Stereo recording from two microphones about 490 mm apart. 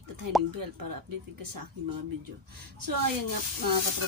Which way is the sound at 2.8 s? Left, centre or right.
Right.